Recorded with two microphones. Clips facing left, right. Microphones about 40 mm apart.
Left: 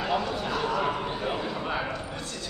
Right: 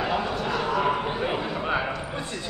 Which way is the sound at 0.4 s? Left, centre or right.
Centre.